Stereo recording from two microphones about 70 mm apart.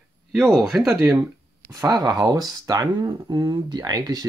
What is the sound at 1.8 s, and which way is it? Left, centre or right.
Speech, right.